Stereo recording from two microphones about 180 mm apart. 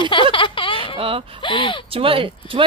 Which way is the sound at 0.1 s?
30° left (ahead or behind).